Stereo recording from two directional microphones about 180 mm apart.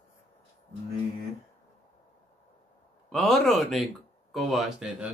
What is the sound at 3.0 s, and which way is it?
Speech, centre (ahead or behind).